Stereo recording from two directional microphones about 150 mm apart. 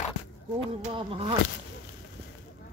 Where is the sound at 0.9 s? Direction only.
40° right (ahead or behind).